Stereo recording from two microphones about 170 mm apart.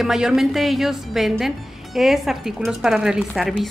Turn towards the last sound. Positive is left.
turn(degrees=0)  # may be behind; listen again after turning